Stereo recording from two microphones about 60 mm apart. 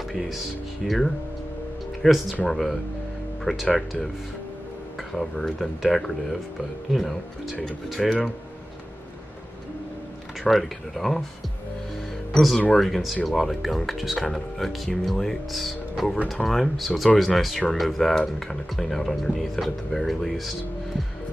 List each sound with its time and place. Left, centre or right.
0.1 s speech: centre
3.5 s speech: centre
5.1 s speech: centre
10.5 s speech: centre
12.3 s speech: centre